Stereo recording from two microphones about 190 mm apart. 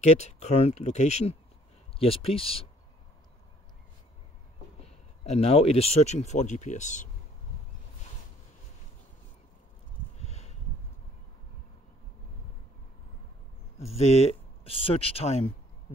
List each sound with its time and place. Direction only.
0.0 s speech: 35° left (ahead or behind)
4.8 s speech: 35° left (ahead or behind)
10.2 s a sound: 35° left (ahead or behind)
13.7 s speech: 35° left (ahead or behind)